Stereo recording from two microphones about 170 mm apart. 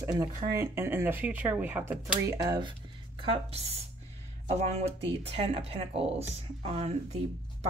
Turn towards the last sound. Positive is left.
turn(degrees=-40)  # may be behind; listen again after turning